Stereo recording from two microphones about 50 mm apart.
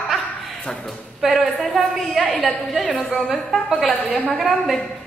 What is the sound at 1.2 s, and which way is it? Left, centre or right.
A woman's voice, centre.